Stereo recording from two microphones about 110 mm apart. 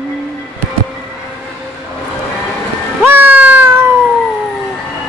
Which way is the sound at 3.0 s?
15° right (ahead or behind).